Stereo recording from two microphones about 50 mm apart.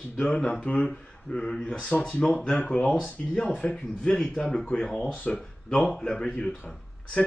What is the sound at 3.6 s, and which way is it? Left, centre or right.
Speech, left.